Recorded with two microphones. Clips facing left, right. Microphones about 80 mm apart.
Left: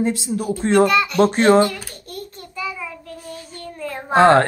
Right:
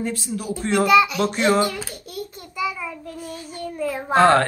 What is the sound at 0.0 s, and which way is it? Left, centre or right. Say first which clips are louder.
Speech: left 6 dB; left.